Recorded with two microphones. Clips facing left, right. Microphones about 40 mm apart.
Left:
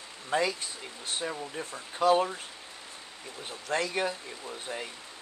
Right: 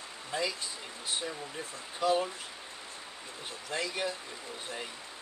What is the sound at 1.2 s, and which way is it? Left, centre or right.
Speech, left.